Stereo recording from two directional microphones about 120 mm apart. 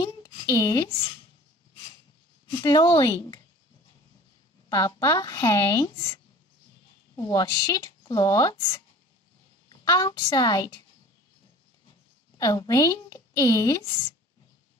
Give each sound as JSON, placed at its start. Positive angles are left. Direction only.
{"t": 0.0, "sound": "a sound", "side_deg": 35}
{"t": 2.6, "sound": "speech", "side_deg": 40}
{"t": 4.6, "sound": "a woman's voice", "side_deg": 30}
{"t": 12.4, "sound": "a woman's voice", "side_deg": 30}